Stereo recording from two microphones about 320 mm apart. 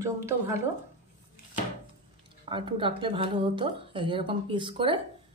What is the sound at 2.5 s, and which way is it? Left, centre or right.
A woman's voice, centre.